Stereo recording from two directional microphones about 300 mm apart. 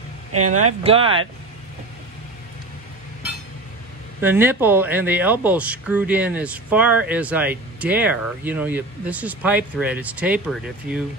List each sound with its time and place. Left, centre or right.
0.7 s speech: centre
4.2 s speech: centre